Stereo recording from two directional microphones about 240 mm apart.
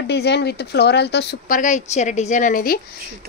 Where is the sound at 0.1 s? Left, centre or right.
Left.